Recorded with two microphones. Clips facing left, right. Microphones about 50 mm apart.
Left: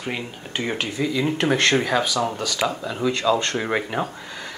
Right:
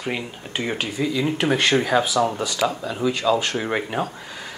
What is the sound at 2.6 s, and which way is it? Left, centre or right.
Speech, centre.